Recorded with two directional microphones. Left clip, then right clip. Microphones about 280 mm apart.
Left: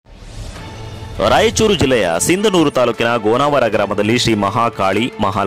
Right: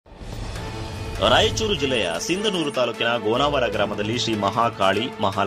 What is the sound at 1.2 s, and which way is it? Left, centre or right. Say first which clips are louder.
Speech: left 6 dB; left.